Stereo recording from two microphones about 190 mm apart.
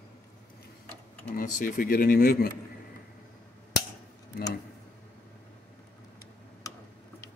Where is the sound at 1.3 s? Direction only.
45° left (ahead or behind).